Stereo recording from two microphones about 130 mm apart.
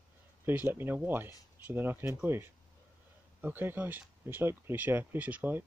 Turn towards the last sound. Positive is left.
turn(degrees=-10)  # may be behind; listen again after turning